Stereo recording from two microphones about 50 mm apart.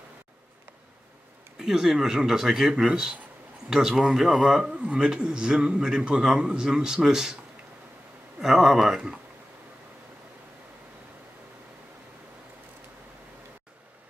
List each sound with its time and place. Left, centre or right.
1.6 s a man's voice: centre
8.4 s a man's voice: centre